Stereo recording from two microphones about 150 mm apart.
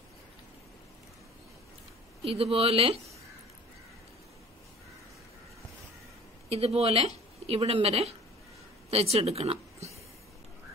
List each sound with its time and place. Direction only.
2.2 s speech: 40° right (ahead or behind)
6.5 s speech: 40° right (ahead or behind)